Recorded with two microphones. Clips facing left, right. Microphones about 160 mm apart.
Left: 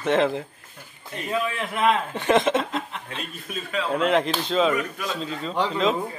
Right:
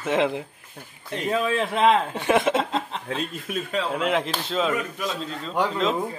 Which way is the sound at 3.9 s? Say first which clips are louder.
Left 6 dB; 5° right (ahead or behind).